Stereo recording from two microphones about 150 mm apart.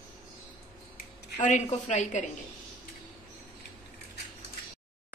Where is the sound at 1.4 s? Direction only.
50° left (ahead or behind).